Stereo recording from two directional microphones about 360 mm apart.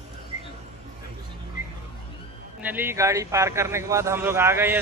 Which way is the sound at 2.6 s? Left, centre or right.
Centre.